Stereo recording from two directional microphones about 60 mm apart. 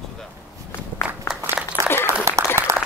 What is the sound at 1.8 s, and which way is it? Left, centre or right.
Applause, right.